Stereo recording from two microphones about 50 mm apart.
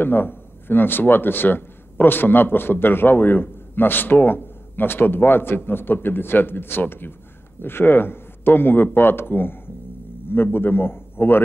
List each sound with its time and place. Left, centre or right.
0.0 s a man's voice: left